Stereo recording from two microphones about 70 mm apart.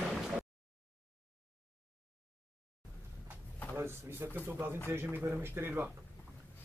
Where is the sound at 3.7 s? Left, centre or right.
Right.